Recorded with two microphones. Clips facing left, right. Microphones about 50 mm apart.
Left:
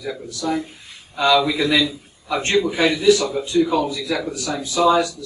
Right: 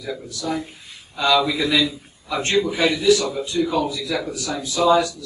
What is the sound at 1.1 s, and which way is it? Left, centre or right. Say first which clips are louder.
A man's voice: left 2 dB; centre.